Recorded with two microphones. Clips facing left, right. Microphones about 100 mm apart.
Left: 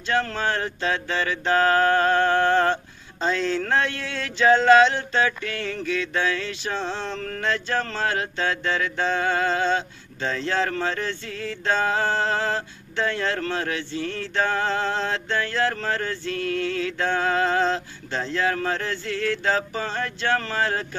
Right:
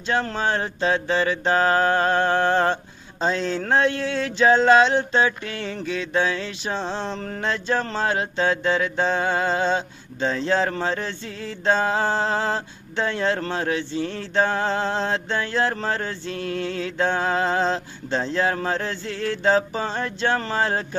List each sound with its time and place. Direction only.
0.1 s mantra: 25° right (ahead or behind)